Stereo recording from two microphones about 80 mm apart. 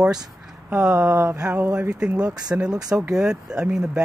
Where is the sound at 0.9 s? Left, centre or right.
Right.